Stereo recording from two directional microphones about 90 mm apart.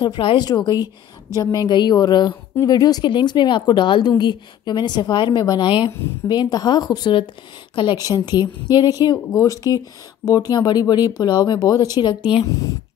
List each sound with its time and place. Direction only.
0.0 s speech: 65° left (ahead or behind)
0.5 s speech: 50° left (ahead or behind)
5.7 s speech: 65° left (ahead or behind); by 12.1 s 45° left (ahead or behind)